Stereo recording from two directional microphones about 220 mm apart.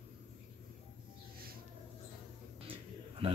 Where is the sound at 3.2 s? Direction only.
25° right (ahead or behind).